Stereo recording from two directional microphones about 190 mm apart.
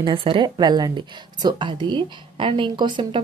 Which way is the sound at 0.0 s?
25° right (ahead or behind).